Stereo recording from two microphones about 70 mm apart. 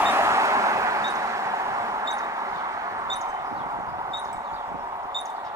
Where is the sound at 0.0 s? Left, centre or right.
Right.